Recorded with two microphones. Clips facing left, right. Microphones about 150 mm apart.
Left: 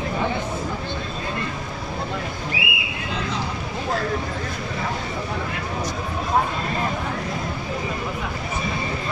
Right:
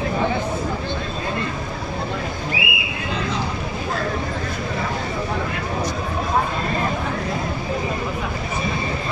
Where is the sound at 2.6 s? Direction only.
70° right (ahead or behind).